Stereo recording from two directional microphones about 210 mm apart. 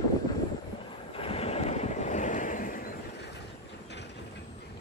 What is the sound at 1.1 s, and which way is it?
Vehicle, 25° left (ahead or behind).